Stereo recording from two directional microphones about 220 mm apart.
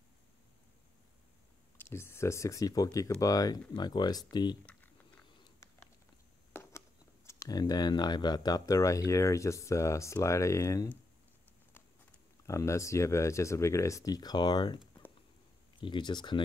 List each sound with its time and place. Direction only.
1.8 s speech: 10° left (ahead or behind)
5.4 s a sound: 10° left (ahead or behind)
7.2 s speech: 15° left (ahead or behind)
12.4 s speech: 15° left (ahead or behind)
15.8 s speech: 20° left (ahead or behind)